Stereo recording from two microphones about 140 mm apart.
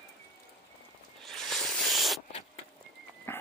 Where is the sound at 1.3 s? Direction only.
5° left (ahead or behind).